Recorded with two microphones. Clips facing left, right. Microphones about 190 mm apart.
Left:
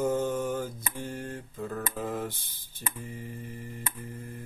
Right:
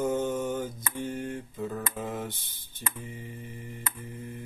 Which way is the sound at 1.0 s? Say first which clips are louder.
Right 4 dB; 25° right (ahead or behind).